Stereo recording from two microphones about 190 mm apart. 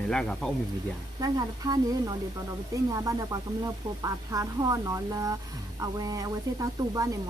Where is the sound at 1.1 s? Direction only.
20° right (ahead or behind).